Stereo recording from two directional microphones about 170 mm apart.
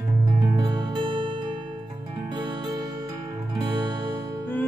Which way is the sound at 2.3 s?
30° right (ahead or behind).